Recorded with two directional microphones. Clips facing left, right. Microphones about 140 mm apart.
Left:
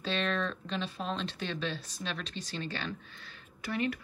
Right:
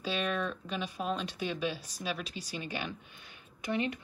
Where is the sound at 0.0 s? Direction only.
10° right (ahead or behind).